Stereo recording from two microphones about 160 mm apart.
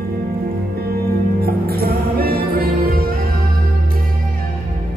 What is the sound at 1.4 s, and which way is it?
Music, 75° right (ahead or behind).